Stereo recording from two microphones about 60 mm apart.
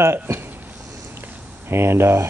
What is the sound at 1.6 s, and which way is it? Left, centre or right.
Speech, right.